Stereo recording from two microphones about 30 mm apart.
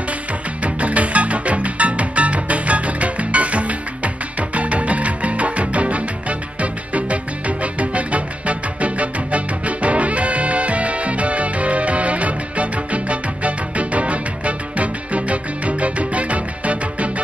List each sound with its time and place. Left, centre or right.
0.7 s music: right